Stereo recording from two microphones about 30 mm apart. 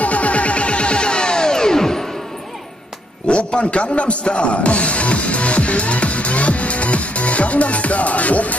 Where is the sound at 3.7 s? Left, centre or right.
Left.